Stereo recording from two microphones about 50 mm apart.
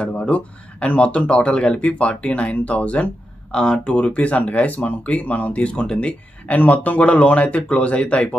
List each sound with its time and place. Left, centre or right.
0.0 s speech: centre
0.3 s speech: left
3.5 s speech: centre